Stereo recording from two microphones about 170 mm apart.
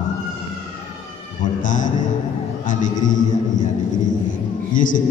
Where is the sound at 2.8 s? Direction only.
50° left (ahead or behind).